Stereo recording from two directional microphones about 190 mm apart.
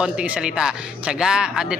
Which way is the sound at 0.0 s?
5° right (ahead or behind).